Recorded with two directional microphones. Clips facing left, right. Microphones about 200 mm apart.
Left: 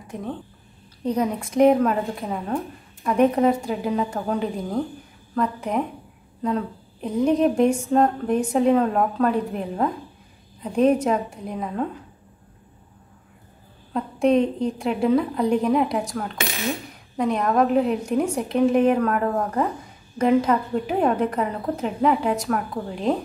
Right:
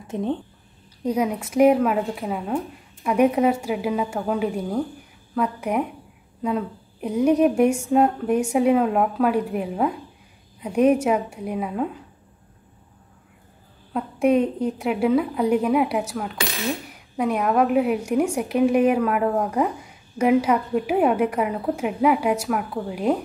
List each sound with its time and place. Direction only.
0.0 s speech: 25° right (ahead or behind)
1.0 s a woman's voice: 10° right (ahead or behind)
13.9 s a woman's voice: 10° right (ahead or behind)